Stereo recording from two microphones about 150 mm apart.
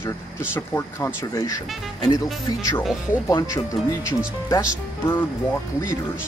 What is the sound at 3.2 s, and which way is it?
Speech, 20° left (ahead or behind).